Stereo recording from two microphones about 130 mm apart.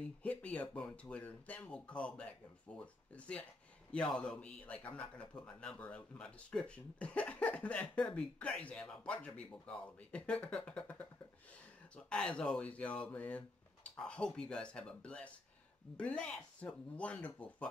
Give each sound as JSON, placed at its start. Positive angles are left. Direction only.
{"t": 0.0, "sound": "a man's voice", "side_deg": 10}